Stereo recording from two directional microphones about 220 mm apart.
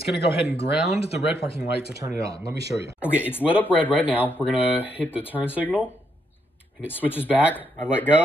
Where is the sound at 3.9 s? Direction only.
5° right (ahead or behind).